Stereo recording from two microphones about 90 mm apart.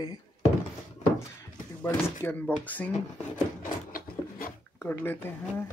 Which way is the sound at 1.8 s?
25° left (ahead or behind).